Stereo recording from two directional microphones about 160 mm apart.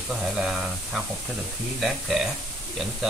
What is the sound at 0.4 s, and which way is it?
Speech, centre (ahead or behind).